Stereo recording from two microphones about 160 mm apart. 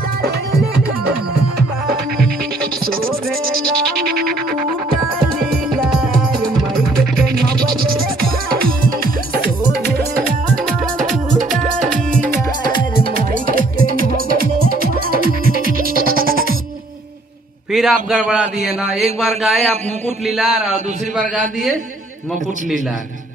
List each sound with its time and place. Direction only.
0.2 s music: 70° right (ahead or behind)
6.8 s music: 70° right (ahead or behind)
13.1 s music: 60° right (ahead or behind)
17.7 s a man's voice: centre (ahead or behind)